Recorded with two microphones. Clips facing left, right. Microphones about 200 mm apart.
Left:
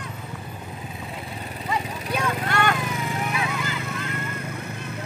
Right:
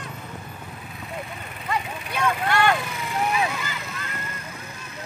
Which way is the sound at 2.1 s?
40° left (ahead or behind).